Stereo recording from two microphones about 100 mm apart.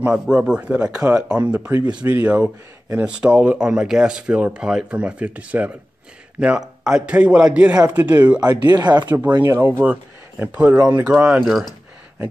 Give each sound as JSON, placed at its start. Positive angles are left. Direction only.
{"t": 0.0, "sound": "speech", "side_deg": -10}
{"t": 8.4, "sound": "speech", "side_deg": -40}
{"t": 9.4, "sound": "speech", "side_deg": -25}